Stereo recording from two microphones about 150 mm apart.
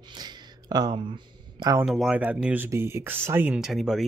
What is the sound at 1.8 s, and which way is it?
Speech, 5° right (ahead or behind).